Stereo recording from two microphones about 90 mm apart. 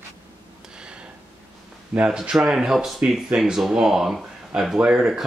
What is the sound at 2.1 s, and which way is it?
Speech, 5° right (ahead or behind).